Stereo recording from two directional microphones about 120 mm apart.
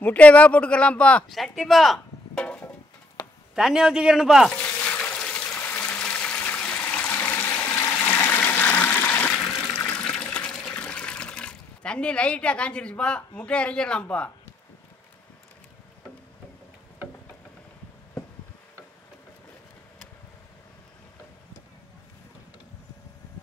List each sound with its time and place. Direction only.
0.0 s speech: 10° left (ahead or behind)
2.3 s a sound: 10° left (ahead or behind)
3.5 s a man's voice: 5° right (ahead or behind)
4.5 s a sound: 10° left (ahead or behind)
9.8 s water: 20° left (ahead or behind)
10.0 s water: 10° left (ahead or behind)